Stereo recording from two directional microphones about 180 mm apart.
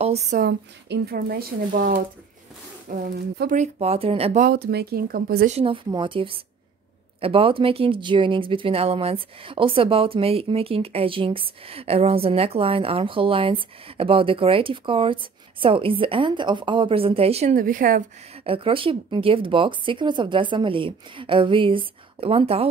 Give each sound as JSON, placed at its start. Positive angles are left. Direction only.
{"t": 0.0, "sound": "speech", "side_deg": -35}
{"t": 0.4, "sound": "speech", "side_deg": -65}
{"t": 4.4, "sound": "speech", "side_deg": -60}
{"t": 5.5, "sound": "speech", "side_deg": -35}
{"t": 17.6, "sound": "speech", "side_deg": -50}
{"t": 18.4, "sound": "speech", "side_deg": -30}